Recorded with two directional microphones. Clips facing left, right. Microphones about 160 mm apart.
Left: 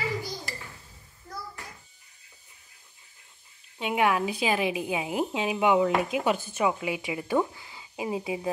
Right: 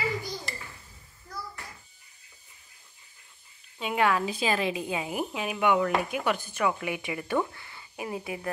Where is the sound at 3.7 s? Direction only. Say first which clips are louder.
Left 1 dB; 15° left (ahead or behind).